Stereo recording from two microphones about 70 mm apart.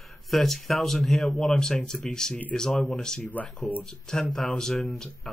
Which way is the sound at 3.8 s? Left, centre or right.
Centre.